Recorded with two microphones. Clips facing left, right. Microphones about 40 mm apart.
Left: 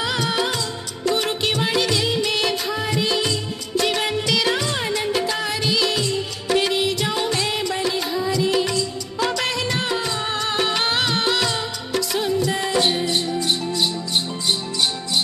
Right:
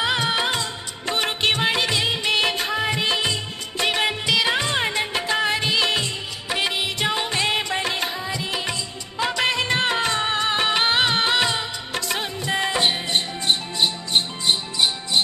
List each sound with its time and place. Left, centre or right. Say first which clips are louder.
0.0 s music: right 1 dB; right
6.5 s music: left 5 dB; centre; by 8.2 s right
8.2 s music of bollywood: left 7 dB; right
10.2 s music of bollywood: right 1 dB; right
12.4 s music: right 1 dB; right